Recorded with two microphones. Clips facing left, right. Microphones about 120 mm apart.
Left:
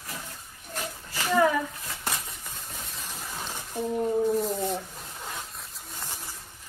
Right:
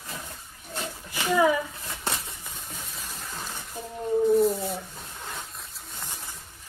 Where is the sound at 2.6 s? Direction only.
Centre (ahead or behind).